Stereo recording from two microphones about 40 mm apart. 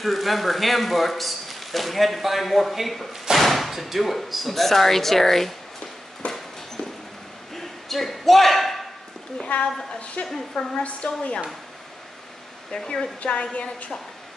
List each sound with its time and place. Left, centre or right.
0.0 s a man's voice: centre
6.2 s a sound: left
7.5 s a sound: centre
9.5 s a woman's voice: left
10.2 s a woman's voice: centre
10.8 s a woman's voice: left
12.7 s a woman's voice: centre